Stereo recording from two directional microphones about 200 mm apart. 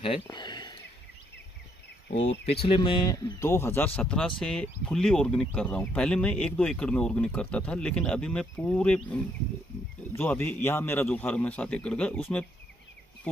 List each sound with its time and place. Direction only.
0.0 s speech: 25° left (ahead or behind)
2.6 s a man's voice: 25° left (ahead or behind); by 12.2 s 5° left (ahead or behind)